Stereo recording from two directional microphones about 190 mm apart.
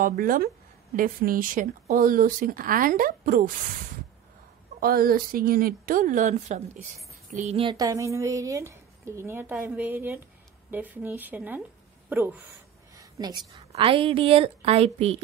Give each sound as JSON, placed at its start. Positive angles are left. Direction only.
{"t": 0.0, "sound": "speech", "side_deg": -45}
{"t": 4.7, "sound": "speech", "side_deg": -50}
{"t": 7.6, "sound": "a woman's voice", "side_deg": -20}
{"t": 12.9, "sound": "a sound", "side_deg": -20}
{"t": 13.7, "sound": "speech", "side_deg": -30}